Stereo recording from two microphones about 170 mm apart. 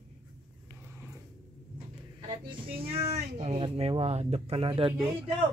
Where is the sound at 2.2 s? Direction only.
30° right (ahead or behind).